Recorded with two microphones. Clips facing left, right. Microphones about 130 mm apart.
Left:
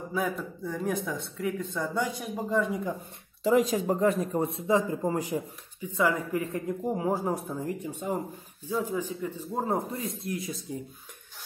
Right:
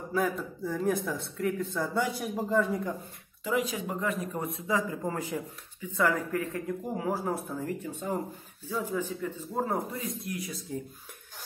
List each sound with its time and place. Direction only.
0.1 s speech: centre (ahead or behind)
3.4 s speech: 40° left (ahead or behind); by 9.8 s 15° left (ahead or behind)
9.8 s speech: 30° left (ahead or behind)